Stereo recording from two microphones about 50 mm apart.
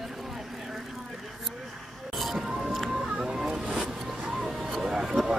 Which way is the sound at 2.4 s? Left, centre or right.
Centre.